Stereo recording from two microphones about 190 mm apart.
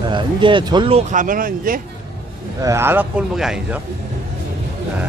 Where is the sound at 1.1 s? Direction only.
45° right (ahead or behind).